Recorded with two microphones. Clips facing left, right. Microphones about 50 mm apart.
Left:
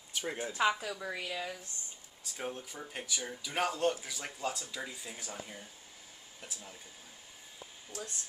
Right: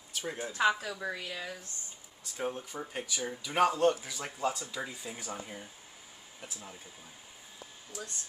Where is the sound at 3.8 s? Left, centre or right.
Centre.